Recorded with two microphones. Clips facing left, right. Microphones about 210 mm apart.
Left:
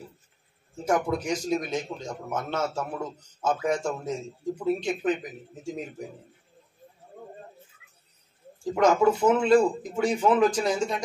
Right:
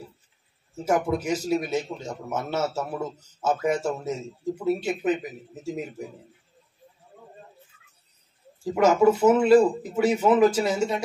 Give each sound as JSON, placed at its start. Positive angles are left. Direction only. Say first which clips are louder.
{"t": 0.8, "sound": "a man's voice", "louder": "right 2 dB", "side_deg": -5}
{"t": 7.0, "sound": "snake", "louder": "left 5 dB", "side_deg": 55}
{"t": 8.7, "sound": "a man's voice", "louder": "right 2 dB", "side_deg": -5}